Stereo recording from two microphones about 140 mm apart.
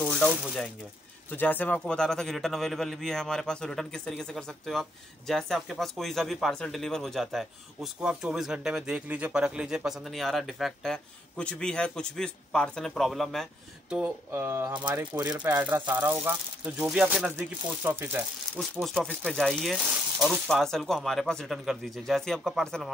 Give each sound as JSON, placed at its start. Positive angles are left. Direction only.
{"t": 0.3, "sound": "a man's voice", "side_deg": -5}
{"t": 1.3, "sound": "a man's voice", "side_deg": 15}
{"t": 14.3, "sound": "speech", "side_deg": -15}
{"t": 15.1, "sound": "speech", "side_deg": -30}
{"t": 15.4, "sound": "speech", "side_deg": -10}
{"t": 18.5, "sound": "a man's voice", "side_deg": 0}